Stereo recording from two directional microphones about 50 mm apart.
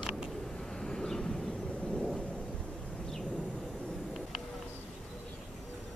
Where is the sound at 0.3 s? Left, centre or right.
Centre.